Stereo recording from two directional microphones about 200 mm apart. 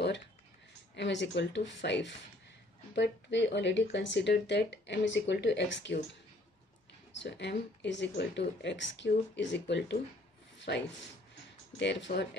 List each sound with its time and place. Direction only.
0.9 s speech: 60° left (ahead or behind)
7.2 s speech: 60° left (ahead or behind)